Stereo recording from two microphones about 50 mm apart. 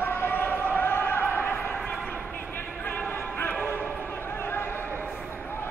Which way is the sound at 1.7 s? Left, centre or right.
Centre.